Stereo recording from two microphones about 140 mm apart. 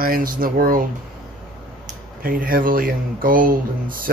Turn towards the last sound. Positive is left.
turn(degrees=-85)